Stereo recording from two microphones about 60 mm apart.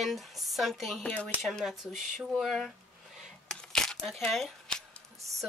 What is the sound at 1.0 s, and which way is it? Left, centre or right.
Speech, left.